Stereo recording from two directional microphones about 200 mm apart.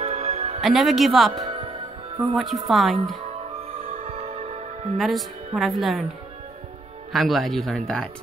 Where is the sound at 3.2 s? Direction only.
30° right (ahead or behind).